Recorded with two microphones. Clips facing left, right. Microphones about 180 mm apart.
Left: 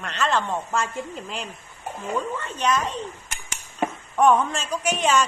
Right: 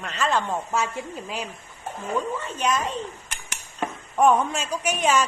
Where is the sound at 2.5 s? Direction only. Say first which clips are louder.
Left 2 dB; 5° right (ahead or behind).